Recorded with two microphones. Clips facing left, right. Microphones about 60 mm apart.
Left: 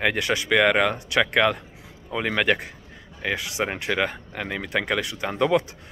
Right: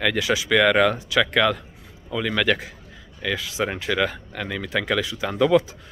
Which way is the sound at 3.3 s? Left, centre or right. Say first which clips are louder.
Right 1 dB; centre.